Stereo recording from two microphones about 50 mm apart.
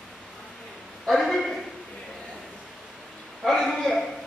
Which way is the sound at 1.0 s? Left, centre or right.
Centre.